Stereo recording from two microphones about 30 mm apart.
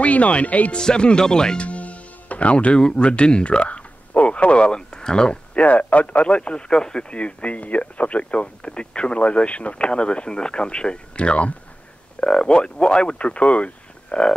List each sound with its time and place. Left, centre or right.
0.0 s speech: left
0.7 s speech: left
1.6 s music: left
2.8 s speech: left
5.6 s speech: left
6.2 s speech: left
12.2 s speech: left
13.2 s speech: left